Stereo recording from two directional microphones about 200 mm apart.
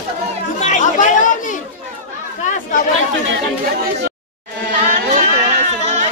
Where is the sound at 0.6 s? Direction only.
35° left (ahead or behind).